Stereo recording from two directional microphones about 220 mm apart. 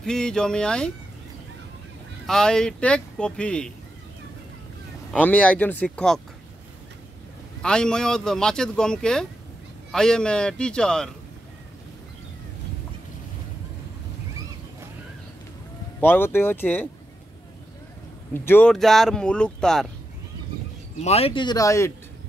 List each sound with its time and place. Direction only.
0.0 s speech: 5° left (ahead or behind)
2.2 s speech: 5° left (ahead or behind)
5.1 s speech: 5° left (ahead or behind)
7.6 s speech: 5° left (ahead or behind)
16.0 s speech: 10° left (ahead or behind)
18.3 s speech: 10° left (ahead or behind)
21.0 s speech: 30° left (ahead or behind)